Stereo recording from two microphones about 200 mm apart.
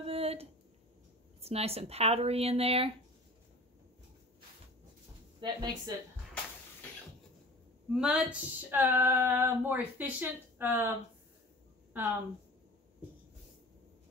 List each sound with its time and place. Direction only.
0.0 s a sound: 30° right (ahead or behind)
1.4 s speech: 30° right (ahead or behind)
5.4 s speech: 20° right (ahead or behind)
7.9 s female singing: centre (ahead or behind)